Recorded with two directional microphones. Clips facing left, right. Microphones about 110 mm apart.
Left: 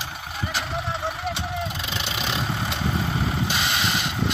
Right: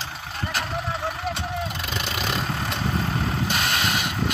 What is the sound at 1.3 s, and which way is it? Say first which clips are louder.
Vehicle: even; centre (ahead or behind).